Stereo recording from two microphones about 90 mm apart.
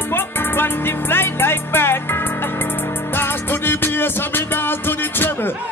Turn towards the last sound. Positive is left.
turn(degrees=25)  # may be behind; listen again after turning